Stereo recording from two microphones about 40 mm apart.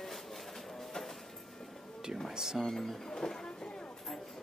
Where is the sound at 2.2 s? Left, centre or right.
Centre.